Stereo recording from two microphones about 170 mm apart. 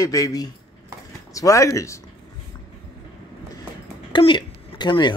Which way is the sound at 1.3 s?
20° left (ahead or behind).